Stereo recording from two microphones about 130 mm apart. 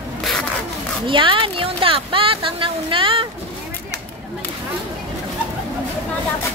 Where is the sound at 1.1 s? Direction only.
40° right (ahead or behind).